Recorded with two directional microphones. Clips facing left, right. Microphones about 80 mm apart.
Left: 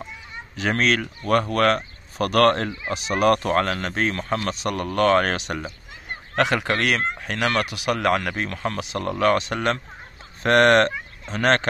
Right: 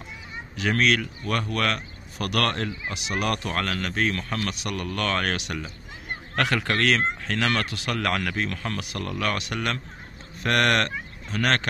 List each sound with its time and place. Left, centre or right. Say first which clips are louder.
0.6 s speech: left 1 dB; left
6.3 s speech: left 3 dB; centre